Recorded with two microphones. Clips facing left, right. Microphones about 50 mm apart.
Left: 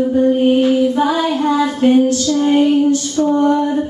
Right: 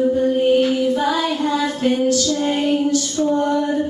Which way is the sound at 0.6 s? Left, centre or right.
Left.